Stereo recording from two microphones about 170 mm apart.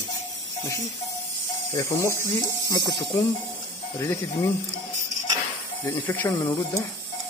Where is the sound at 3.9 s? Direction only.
15° left (ahead or behind).